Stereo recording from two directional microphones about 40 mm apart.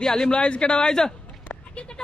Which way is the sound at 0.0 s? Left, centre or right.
Centre.